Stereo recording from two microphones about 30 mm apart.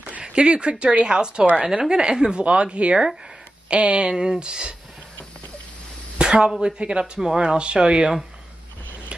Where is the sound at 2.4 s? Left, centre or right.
Right.